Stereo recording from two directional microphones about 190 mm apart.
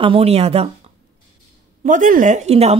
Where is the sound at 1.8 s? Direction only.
40° right (ahead or behind).